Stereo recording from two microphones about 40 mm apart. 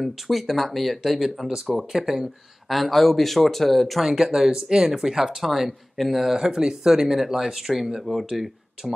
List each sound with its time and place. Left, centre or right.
0.0 s speech: centre
2.7 s speech: centre
4.0 s speech: centre
8.8 s speech: centre